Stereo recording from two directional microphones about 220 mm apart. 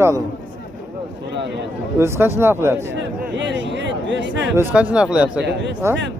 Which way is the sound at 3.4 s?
55° right (ahead or behind).